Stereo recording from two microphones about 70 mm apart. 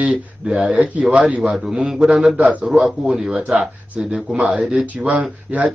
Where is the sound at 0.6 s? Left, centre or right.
Centre.